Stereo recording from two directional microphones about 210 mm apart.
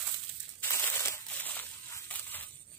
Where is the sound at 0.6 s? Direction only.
10° left (ahead or behind).